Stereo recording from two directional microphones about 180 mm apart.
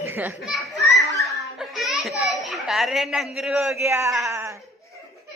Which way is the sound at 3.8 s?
15° right (ahead or behind).